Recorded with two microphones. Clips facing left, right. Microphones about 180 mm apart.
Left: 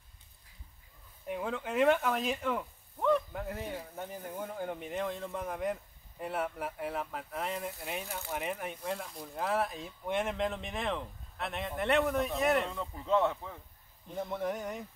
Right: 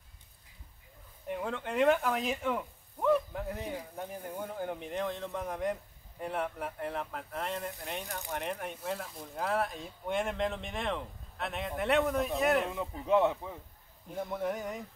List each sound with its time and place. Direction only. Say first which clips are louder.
1.2 s speech: even; 5° left (ahead or behind)
12.7 s speech: right 2 dB; 15° right (ahead or behind)
14.2 s speech: right 1 dB; centre (ahead or behind)